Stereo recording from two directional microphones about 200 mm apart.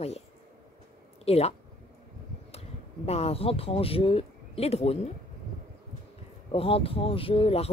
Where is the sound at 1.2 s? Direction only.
30° left (ahead or behind).